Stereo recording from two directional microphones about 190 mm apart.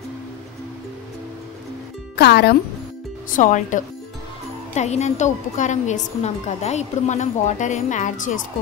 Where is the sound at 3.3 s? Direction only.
40° left (ahead or behind).